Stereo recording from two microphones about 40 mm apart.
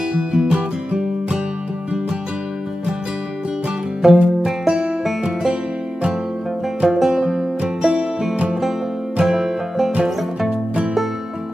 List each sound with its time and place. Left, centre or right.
0.1 s music: right
4.0 s music: centre
6.8 s music: centre
7.6 s music: right
9.2 s music: centre